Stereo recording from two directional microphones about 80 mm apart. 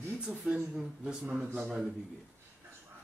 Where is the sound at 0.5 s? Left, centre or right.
Centre.